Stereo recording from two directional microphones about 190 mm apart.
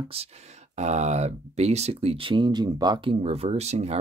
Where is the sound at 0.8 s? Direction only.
35° right (ahead or behind).